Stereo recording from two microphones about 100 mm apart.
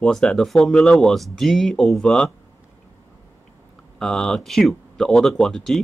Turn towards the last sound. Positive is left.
turn(degrees=5)  # may be behind; listen again after turning